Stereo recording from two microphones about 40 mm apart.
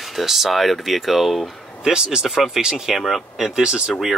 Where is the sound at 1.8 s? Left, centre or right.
Centre.